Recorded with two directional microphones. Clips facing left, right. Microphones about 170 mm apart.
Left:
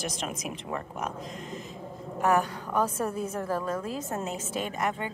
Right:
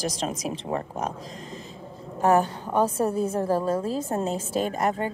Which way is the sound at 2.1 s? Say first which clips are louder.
Right 4 dB; 30° right (ahead or behind).